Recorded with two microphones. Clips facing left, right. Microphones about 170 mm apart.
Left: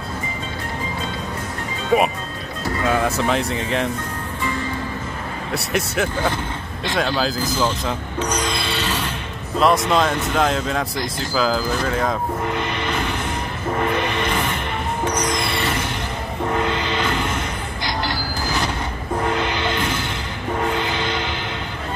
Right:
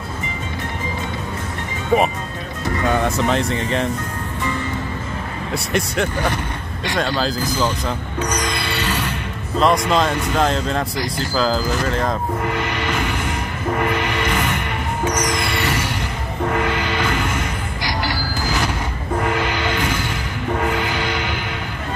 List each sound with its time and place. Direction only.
1.9 s speech: 5° left (ahead or behind)
5.5 s speech: centre (ahead or behind)
8.2 s music: 10° right (ahead or behind)
9.6 s speech: centre (ahead or behind)
12.4 s music: 20° left (ahead or behind)
16.5 s music: 15° right (ahead or behind)
19.3 s music: 20° left (ahead or behind)
21.0 s music: 10° right (ahead or behind)